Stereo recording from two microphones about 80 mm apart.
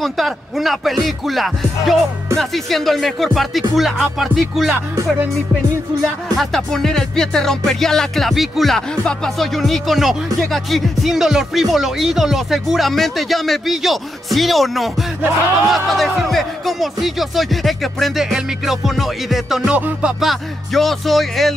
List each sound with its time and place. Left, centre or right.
0.0 s music: centre
6.2 s music: centre